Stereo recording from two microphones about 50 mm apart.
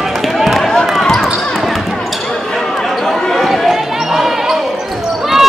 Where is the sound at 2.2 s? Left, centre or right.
Centre.